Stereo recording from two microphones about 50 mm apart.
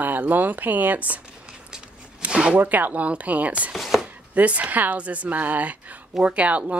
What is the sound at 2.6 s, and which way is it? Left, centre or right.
Speech, right.